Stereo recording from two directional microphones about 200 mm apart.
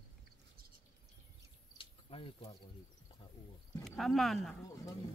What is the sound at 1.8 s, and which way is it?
Cricket, 25° left (ahead or behind).